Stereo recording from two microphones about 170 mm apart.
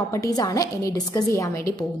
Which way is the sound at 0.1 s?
20° left (ahead or behind).